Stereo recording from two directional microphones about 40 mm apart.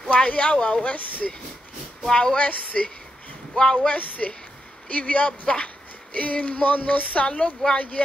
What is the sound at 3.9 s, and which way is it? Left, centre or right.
Speech, left.